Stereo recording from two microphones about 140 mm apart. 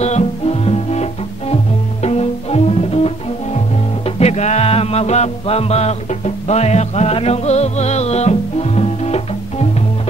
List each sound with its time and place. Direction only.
0.0 s music: 50° left (ahead or behind)
2.0 s music: 45° left (ahead or behind)